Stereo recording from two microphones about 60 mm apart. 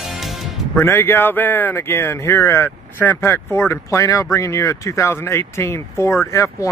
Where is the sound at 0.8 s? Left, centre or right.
Left.